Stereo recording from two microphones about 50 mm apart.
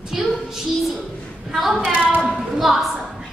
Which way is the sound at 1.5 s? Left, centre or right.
Centre.